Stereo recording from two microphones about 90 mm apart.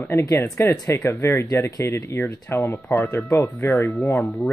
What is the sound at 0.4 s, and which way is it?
Speech, 30° left (ahead or behind).